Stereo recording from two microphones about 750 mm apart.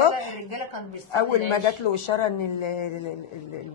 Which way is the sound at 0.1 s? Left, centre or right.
Left.